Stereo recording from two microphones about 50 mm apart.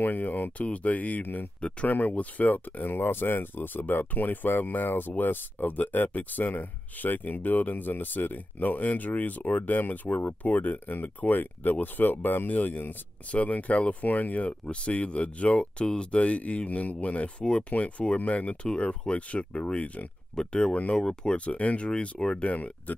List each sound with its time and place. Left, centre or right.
0.0 s speech: left
13.3 s speech: left
20.3 s speech: centre
20.7 s speech: left
21.0 s speech: centre
21.5 s speech: left